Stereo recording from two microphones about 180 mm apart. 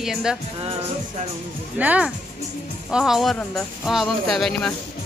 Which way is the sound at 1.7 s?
10° right (ahead or behind).